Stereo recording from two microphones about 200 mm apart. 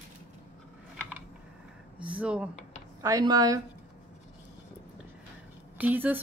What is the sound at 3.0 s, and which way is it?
Speech, 15° right (ahead or behind).